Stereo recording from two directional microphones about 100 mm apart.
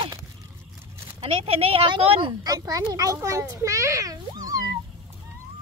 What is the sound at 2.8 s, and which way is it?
A child's voice, 35° right (ahead or behind).